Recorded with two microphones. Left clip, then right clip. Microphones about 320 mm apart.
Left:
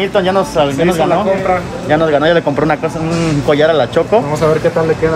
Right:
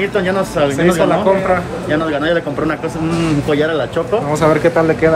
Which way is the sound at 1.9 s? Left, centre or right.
Centre.